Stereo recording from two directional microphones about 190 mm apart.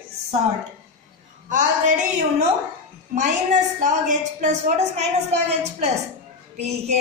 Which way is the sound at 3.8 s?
40° right (ahead or behind).